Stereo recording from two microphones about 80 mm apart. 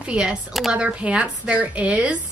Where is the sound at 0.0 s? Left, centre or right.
Centre.